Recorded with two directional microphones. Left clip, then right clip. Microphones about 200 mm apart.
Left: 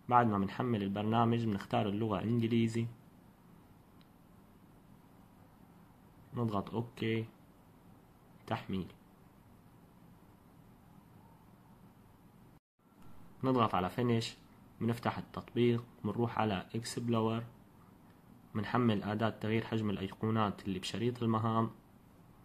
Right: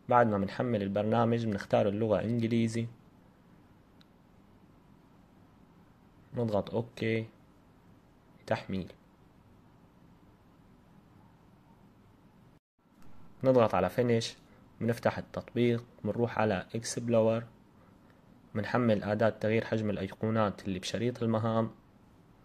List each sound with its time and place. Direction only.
0.1 s speech: 15° right (ahead or behind)
6.3 s speech: 15° right (ahead or behind)
8.5 s speech: 15° right (ahead or behind)
13.4 s speech: 20° right (ahead or behind)
18.5 s speech: 15° right (ahead or behind)